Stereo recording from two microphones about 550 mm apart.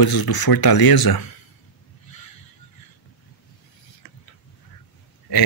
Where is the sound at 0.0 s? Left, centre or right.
Left.